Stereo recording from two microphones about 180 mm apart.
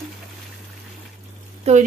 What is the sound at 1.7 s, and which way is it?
Speech, 35° right (ahead or behind).